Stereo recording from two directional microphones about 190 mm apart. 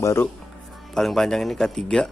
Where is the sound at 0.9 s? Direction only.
Centre (ahead or behind).